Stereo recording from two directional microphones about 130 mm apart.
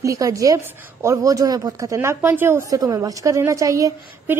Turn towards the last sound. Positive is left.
turn(degrees=-25)  # may be behind; listen again after turning